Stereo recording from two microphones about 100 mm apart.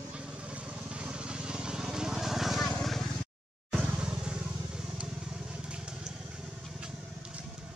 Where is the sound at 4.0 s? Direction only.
10° right (ahead or behind).